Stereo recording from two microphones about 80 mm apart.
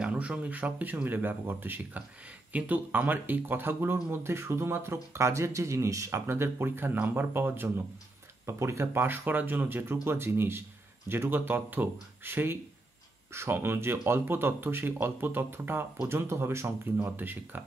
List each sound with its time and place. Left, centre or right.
0.0 s speech: centre